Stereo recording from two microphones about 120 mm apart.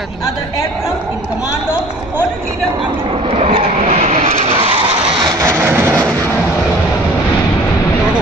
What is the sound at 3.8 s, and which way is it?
Vehicle, 75° right (ahead or behind).